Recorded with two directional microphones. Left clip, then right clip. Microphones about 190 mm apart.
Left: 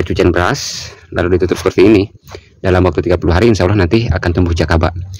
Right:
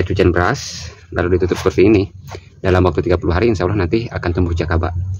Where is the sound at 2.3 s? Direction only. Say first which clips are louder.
Left 2 dB; 35° left (ahead or behind); by 4.9 s 50° left (ahead or behind).